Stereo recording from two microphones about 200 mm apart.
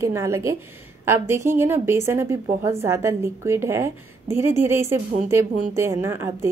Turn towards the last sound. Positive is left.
turn(degrees=-15)  # may be behind; listen again after turning